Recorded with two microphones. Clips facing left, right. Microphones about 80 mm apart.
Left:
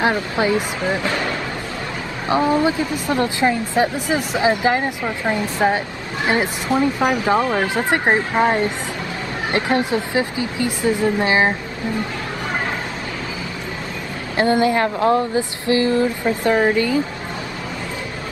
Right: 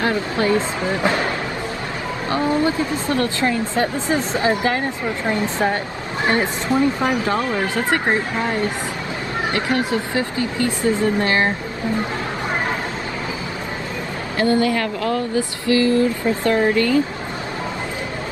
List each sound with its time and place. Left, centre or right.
0.0 s speech: centre
2.2 s speech: left
14.3 s speech: left